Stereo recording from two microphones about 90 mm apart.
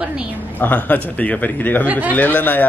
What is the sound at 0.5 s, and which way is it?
Speech, 20° left (ahead or behind).